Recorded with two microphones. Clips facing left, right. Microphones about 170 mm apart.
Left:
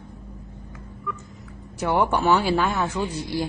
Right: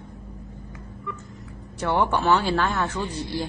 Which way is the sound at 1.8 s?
10° left (ahead or behind).